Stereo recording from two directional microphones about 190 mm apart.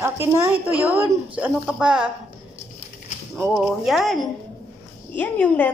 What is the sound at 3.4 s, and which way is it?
A woman's voice, centre (ahead or behind).